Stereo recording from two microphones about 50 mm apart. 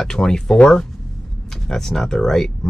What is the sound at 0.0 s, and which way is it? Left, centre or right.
Speech, centre.